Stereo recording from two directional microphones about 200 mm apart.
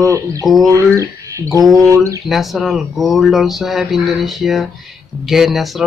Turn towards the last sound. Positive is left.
turn(degrees=0)  # may be behind; listen again after turning